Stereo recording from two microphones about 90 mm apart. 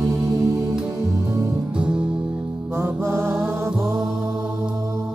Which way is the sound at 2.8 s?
30° right (ahead or behind).